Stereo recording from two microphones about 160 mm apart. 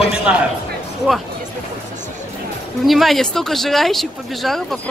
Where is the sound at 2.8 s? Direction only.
Centre (ahead or behind).